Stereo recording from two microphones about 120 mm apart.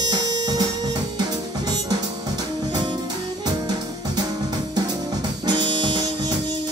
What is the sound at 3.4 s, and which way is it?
Music, 35° right (ahead or behind).